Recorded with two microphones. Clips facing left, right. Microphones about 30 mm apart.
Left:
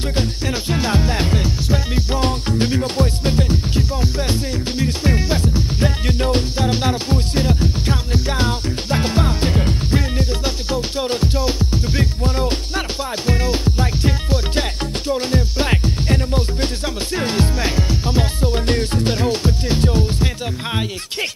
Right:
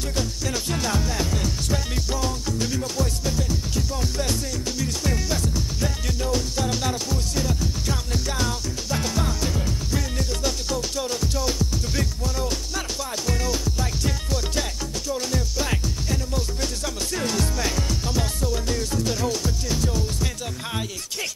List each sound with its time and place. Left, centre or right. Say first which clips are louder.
0.1 s music: left 4 dB; left
2.1 s music: left 8 dB; left
3.9 s music: left 5 dB; left
6.6 s music: left 6 dB; left